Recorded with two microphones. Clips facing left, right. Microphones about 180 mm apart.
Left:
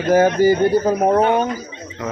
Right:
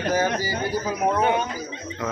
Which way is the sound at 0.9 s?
40° left (ahead or behind).